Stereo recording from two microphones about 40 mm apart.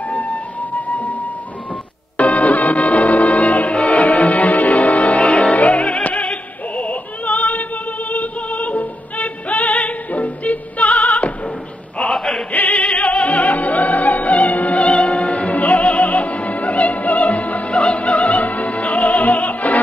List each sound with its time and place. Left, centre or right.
0.0 s flute: left
2.1 s music: left
6.2 s opera: left
12.0 s chant: centre
12.4 s music: left
12.8 s opera: left